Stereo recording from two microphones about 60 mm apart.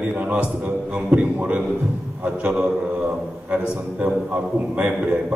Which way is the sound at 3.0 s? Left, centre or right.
Centre.